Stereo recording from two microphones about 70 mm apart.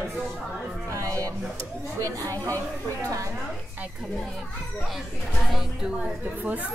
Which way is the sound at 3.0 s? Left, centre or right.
Right.